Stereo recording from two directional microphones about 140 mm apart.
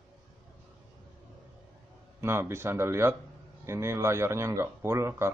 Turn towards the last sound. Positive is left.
turn(degrees=-20)  # may be behind; listen again after turning